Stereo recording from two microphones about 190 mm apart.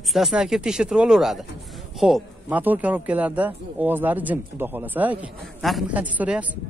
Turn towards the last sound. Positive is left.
turn(degrees=-10)  # may be behind; listen again after turning